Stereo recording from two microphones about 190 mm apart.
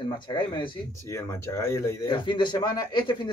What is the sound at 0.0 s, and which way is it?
Speech, 25° left (ahead or behind).